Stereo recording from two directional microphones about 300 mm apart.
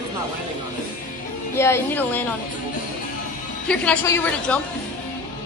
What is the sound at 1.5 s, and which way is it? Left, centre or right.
Speech, centre.